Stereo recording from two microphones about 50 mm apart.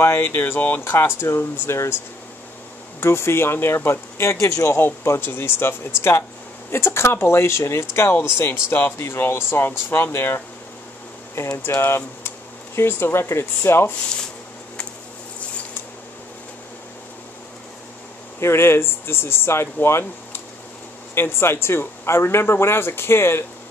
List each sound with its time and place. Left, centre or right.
0.0 s speech: left
0.6 s speech: left
3.0 s speech: left
4.7 s speech: left
8.1 s speech: left
18.4 s speech: left